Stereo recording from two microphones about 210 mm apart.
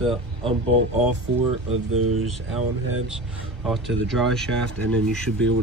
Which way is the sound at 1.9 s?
90° right.